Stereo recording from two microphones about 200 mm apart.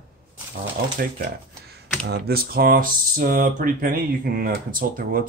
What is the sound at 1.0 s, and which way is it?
Speech, 50° right (ahead or behind).